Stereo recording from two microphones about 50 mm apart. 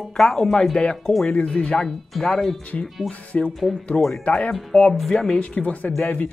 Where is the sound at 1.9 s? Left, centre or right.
Centre.